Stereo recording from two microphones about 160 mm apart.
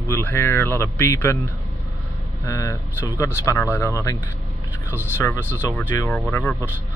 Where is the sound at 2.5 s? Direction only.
20° left (ahead or behind).